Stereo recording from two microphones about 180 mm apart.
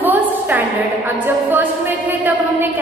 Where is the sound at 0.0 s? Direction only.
10° right (ahead or behind).